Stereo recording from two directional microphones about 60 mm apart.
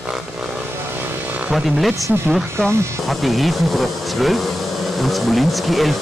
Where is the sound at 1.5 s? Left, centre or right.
Centre.